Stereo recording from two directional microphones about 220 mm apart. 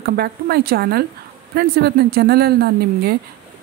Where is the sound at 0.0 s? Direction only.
45° right (ahead or behind).